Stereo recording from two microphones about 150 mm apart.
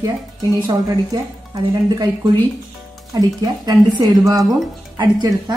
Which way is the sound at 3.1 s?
25° right (ahead or behind).